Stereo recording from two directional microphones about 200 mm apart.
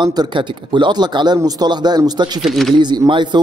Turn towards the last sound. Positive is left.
turn(degrees=-20)  # may be behind; listen again after turning